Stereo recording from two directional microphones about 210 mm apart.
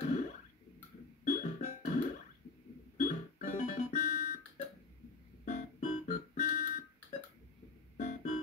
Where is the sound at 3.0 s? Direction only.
35° left (ahead or behind).